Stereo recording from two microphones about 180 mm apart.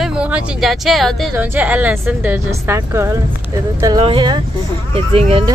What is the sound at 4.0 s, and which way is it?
Speech, 30° right (ahead or behind).